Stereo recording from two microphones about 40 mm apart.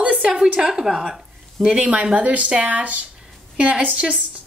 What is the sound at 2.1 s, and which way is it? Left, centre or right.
Speech, right.